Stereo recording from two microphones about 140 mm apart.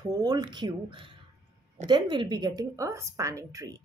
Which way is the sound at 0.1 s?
30° right (ahead or behind).